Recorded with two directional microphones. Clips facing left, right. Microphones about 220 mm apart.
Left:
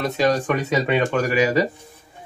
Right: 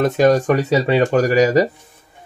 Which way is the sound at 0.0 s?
45° right (ahead or behind).